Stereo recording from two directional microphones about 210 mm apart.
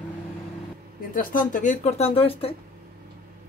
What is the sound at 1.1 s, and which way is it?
Speech, 40° left (ahead or behind).